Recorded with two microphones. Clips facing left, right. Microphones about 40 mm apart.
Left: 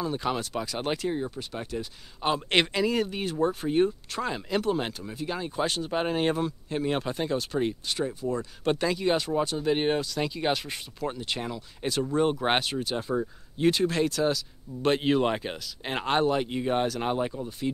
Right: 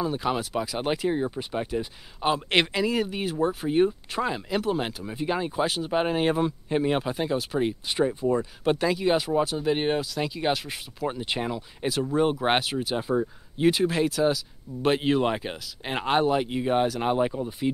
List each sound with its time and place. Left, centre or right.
0.0 s speech: centre
2.2 s speech: centre
5.1 s speech: centre
5.6 s speech: centre
7.9 s speech: right
8.6 s speech: centre
11.1 s speech: centre